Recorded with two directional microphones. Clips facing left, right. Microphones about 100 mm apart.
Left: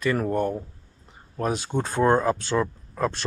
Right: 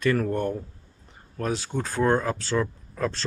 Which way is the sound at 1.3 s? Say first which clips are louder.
Left 2 dB; 15° left (ahead or behind).